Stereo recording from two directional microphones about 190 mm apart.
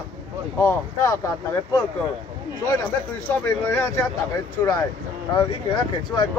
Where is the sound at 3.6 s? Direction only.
15° left (ahead or behind).